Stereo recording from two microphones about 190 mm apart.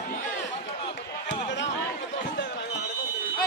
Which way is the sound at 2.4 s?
60° left (ahead or behind).